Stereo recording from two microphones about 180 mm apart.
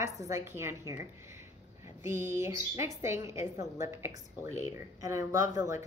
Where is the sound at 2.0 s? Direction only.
15° right (ahead or behind).